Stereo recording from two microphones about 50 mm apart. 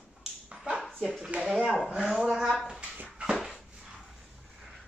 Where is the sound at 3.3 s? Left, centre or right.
Centre.